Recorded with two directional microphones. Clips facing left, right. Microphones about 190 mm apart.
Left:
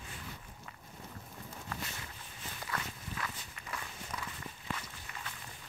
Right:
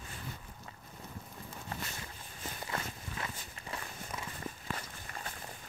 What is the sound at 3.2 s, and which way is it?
Walk, 25° right (ahead or behind).